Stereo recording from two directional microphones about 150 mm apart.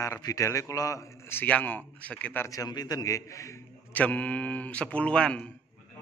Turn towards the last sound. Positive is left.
turn(degrees=5)  # may be behind; listen again after turning